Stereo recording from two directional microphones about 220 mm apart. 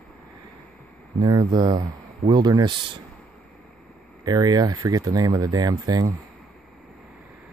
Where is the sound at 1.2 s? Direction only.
20° right (ahead or behind).